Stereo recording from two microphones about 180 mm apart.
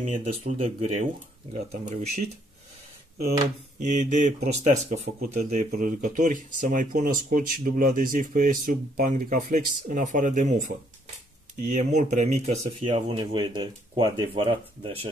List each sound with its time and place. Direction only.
0.1 s speech: 35° right (ahead or behind)
3.9 s speech: 40° right (ahead or behind)
11.7 s speech: 40° right (ahead or behind)